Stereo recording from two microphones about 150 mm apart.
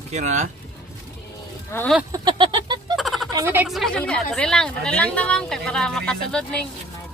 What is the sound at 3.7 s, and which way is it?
Speech, centre (ahead or behind).